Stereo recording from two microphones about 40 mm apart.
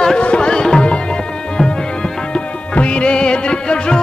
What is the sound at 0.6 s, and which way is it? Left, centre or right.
Tabla, centre.